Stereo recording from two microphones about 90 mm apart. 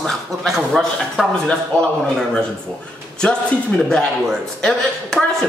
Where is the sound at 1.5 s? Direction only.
10° left (ahead or behind).